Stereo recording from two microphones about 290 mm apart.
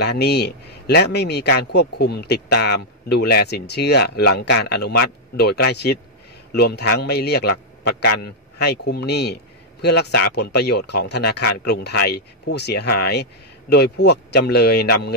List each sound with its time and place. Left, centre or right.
0.0 s a man's voice: left